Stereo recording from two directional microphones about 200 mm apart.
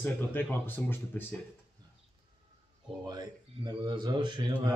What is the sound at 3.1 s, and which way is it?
A man's voice, 20° right (ahead or behind).